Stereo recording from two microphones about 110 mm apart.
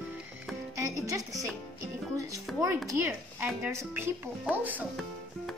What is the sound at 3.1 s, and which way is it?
Speech, 15° right (ahead or behind).